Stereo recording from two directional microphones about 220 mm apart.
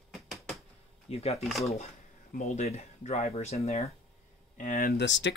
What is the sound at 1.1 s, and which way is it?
Speech, 25° left (ahead or behind).